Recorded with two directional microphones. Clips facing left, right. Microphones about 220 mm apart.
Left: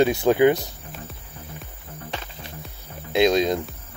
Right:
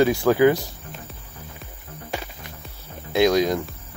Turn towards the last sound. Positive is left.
turn(degrees=25)  # may be behind; listen again after turning